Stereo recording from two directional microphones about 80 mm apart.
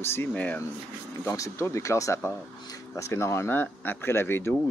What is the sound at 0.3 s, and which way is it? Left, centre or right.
Speech, centre.